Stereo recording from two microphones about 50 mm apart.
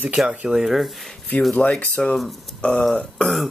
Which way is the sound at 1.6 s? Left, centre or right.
Left.